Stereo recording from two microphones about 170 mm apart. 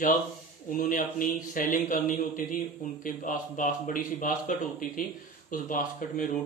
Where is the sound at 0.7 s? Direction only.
55° left (ahead or behind).